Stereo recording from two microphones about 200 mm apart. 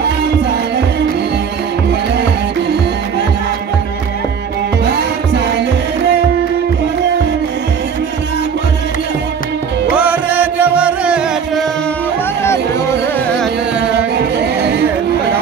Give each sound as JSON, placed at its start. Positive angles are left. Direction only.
{"t": 9.9, "sound": "music", "side_deg": -10}
{"t": 13.7, "sound": "music", "side_deg": -55}